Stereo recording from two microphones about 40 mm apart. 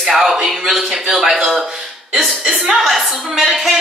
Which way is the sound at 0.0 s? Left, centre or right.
Centre.